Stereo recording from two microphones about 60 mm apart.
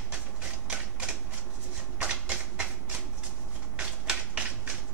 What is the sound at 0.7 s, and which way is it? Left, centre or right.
Typewriter, centre.